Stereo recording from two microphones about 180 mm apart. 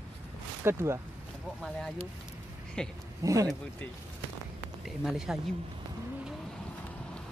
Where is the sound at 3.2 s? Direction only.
20° right (ahead or behind).